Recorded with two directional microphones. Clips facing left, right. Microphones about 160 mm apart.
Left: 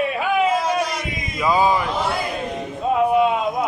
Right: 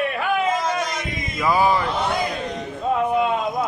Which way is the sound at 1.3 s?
15° left (ahead or behind).